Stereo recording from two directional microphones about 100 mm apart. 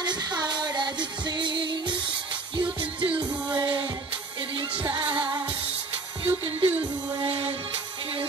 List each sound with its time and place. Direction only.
0.0 s music: 45° right (ahead or behind)
4.8 s music: 50° right (ahead or behind)
6.2 s music: 70° right (ahead or behind)